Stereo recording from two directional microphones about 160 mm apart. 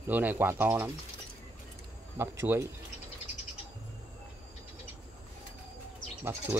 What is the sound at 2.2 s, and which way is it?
Speech, 15° right (ahead or behind).